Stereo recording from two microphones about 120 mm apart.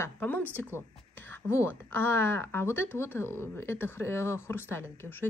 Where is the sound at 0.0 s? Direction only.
15° left (ahead or behind).